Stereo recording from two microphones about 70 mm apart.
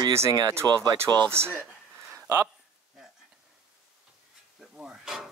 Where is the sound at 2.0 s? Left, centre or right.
Right.